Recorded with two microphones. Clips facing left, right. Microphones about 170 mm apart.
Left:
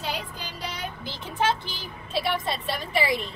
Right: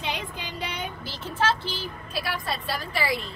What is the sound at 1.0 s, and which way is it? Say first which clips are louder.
A woman's voice: left 1 dB; 20° left (ahead or behind).